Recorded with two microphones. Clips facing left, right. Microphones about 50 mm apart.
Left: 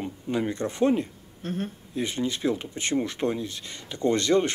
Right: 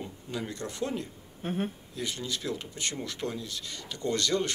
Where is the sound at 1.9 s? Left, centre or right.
Left.